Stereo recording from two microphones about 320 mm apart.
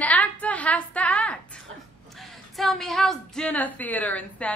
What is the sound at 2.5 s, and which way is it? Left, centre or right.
A woman's voice, centre.